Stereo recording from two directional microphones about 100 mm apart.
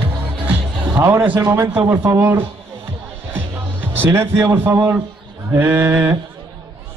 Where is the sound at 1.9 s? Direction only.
30° right (ahead or behind).